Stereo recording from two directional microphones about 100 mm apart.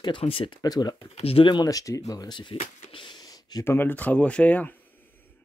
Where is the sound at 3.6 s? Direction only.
20° left (ahead or behind).